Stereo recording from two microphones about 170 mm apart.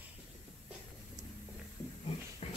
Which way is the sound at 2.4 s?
40° left (ahead or behind).